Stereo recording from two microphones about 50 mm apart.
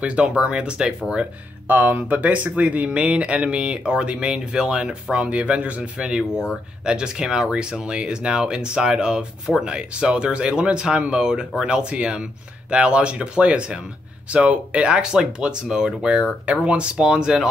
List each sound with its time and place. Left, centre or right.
0.0 s speech: right
1.7 s speech: right
5.9 s speech: centre